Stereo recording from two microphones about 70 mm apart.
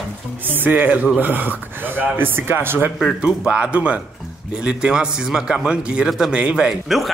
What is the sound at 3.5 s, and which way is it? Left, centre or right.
A man's voice, centre.